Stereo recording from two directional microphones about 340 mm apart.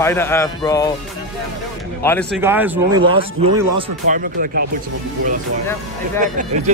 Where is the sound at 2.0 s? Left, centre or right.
Centre; by 4.6 s right.